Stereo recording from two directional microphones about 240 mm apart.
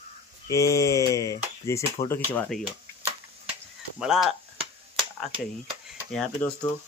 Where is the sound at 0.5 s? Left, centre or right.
Centre.